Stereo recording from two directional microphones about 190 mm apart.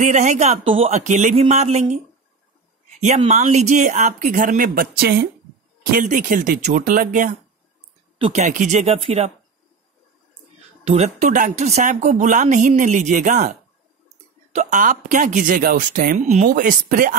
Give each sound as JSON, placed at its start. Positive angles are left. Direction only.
{"t": 0.0, "sound": "speech", "side_deg": -40}
{"t": 10.8, "sound": "speech", "side_deg": -35}